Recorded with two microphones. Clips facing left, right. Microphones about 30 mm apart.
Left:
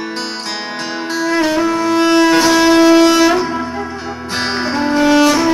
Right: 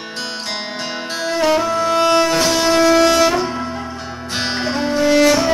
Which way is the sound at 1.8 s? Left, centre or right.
Centre.